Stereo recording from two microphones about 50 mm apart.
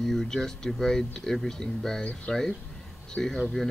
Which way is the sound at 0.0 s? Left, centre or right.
Centre.